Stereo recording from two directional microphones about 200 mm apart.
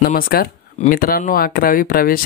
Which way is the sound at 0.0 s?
45° left (ahead or behind).